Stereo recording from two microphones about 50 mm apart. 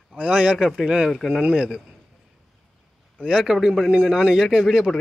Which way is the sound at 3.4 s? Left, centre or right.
Centre.